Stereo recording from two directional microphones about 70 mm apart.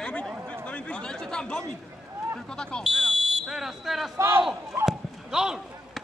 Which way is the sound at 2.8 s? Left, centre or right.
Centre.